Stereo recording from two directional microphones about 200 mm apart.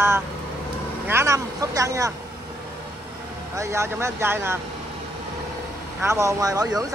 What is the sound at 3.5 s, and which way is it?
Speech, 15° right (ahead or behind).